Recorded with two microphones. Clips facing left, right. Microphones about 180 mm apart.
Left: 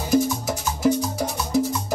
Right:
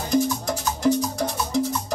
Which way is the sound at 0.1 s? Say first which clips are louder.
Left 1 dB; 5° left (ahead or behind).